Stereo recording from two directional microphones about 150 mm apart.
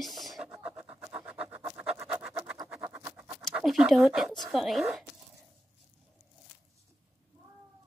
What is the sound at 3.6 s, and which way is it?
Speech, centre (ahead or behind).